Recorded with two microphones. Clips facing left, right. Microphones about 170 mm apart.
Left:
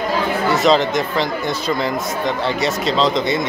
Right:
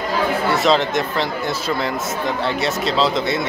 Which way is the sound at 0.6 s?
Centre (ahead or behind).